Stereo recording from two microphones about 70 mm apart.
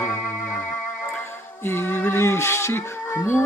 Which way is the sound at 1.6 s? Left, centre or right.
Left.